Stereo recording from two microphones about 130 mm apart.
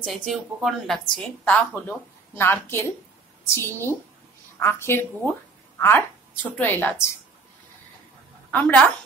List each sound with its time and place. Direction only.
0.0 s a woman's voice: centre (ahead or behind)
8.5 s a woman's voice: 10° left (ahead or behind)